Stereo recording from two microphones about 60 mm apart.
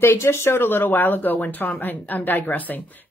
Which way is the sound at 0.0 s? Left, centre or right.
Left.